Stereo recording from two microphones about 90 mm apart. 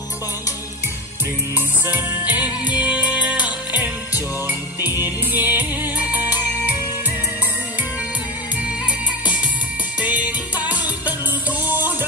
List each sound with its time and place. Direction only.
1.9 s music: 20° right (ahead or behind)
9.9 s music: 15° right (ahead or behind)